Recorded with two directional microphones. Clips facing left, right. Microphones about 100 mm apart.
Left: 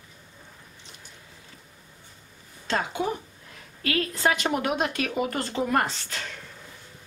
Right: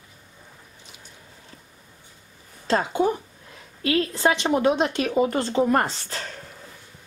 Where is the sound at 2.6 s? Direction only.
35° right (ahead or behind).